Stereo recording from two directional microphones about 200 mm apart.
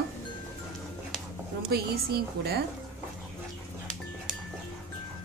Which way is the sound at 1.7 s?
50° right (ahead or behind).